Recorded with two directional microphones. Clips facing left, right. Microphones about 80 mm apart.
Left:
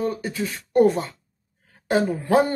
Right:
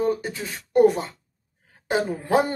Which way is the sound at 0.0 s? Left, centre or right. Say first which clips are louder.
Right 1 dB; right.